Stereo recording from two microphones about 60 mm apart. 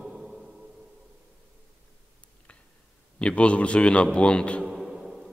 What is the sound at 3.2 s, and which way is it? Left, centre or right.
A man's voice, centre.